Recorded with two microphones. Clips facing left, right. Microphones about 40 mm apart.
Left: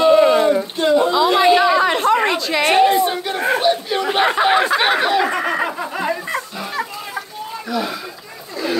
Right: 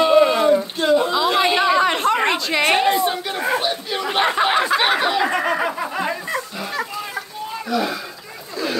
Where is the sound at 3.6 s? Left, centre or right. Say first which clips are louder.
Left 5 dB; centre.